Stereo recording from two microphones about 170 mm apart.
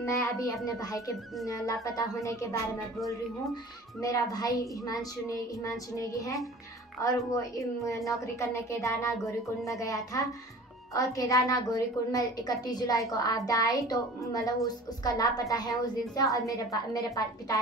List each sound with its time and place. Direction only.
0.0 s a woman's voice: 20° left (ahead or behind)
4.0 s a woman's voice: 20° left (ahead or behind)